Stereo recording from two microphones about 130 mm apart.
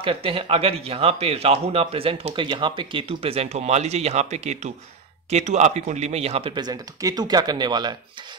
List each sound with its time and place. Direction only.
0.0 s speech: 45° right (ahead or behind)
6.5 s speech: 30° right (ahead or behind)